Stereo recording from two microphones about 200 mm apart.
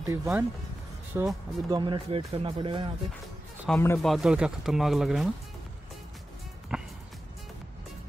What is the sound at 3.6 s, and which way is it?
Speech, 10° left (ahead or behind).